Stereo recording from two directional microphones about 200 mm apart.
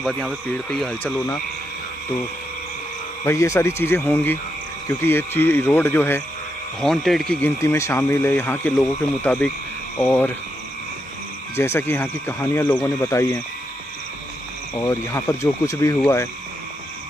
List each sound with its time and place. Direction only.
0.0 s speech: 5° left (ahead or behind)
3.3 s speech: 15° left (ahead or behind)
11.5 s speech: 10° left (ahead or behind)
14.8 s speech: 15° left (ahead or behind)